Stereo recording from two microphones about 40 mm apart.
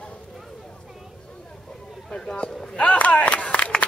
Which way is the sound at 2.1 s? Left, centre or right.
Centre.